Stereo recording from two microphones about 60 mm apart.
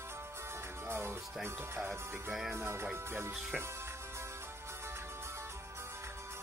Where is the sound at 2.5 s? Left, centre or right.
Right.